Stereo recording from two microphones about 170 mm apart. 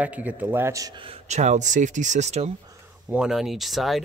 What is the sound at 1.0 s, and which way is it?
Speech, 40° right (ahead or behind).